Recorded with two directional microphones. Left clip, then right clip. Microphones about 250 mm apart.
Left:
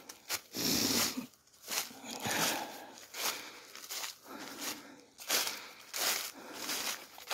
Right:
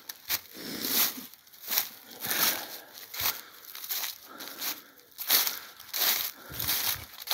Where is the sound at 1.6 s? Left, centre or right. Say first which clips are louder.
Right 4 dB; right.